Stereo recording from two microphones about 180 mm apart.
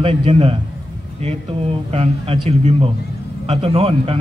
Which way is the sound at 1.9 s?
35° right (ahead or behind).